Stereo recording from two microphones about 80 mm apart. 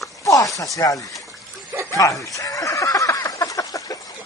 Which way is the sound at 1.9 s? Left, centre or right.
Left.